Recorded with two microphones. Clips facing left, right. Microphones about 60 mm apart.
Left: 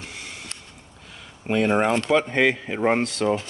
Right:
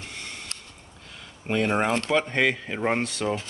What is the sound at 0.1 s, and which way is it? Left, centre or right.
Snort, centre.